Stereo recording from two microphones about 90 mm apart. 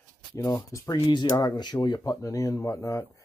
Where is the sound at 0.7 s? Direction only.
40° left (ahead or behind).